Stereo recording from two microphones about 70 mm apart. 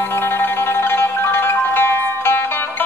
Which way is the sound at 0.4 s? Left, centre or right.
Left.